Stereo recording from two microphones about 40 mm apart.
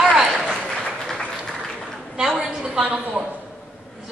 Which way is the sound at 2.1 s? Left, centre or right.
Centre.